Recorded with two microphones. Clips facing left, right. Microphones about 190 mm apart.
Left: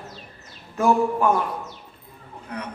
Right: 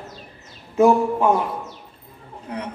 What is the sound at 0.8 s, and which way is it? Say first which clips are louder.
Speech: right 4 dB; 20° right (ahead or behind).